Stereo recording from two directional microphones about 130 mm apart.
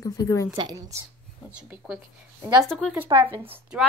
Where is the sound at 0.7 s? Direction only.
25° right (ahead or behind).